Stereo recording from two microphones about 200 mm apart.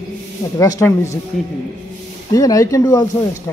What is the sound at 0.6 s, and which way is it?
Speech, 15° left (ahead or behind).